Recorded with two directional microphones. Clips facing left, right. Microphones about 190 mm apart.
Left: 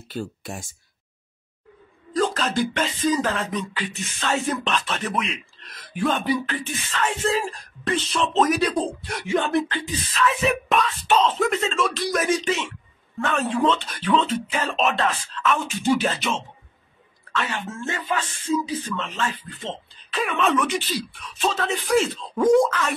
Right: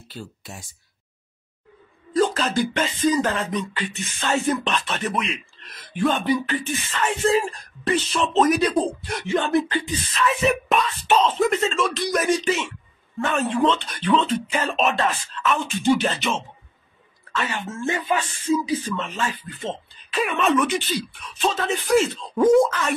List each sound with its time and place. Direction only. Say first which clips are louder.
0.1 s speech: left 7 dB; 50° left (ahead or behind)
2.1 s a woman's voice: right 2 dB; centre (ahead or behind)
17.8 s speech: right 4 dB; 15° right (ahead or behind)